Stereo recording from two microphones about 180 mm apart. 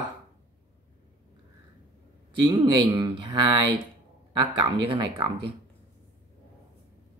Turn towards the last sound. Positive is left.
turn(degrees=-30)  # may be behind; listen again after turning